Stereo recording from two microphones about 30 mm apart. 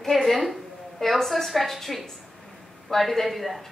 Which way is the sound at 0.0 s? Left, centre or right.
Centre.